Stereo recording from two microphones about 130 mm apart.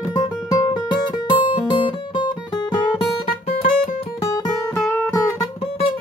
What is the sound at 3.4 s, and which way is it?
Music, 90° left.